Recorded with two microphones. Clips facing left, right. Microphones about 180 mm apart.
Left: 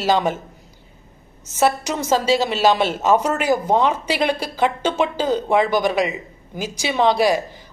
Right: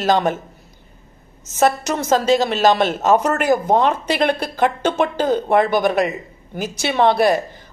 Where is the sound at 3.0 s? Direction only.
55° right (ahead or behind).